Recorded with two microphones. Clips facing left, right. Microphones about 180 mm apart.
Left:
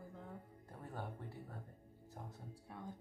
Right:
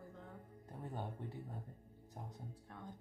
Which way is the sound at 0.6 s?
20° right (ahead or behind).